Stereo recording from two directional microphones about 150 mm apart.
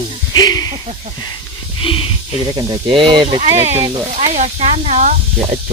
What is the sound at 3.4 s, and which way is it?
Speech, 45° right (ahead or behind).